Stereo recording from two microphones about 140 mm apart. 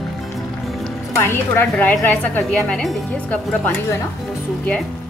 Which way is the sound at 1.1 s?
15° left (ahead or behind).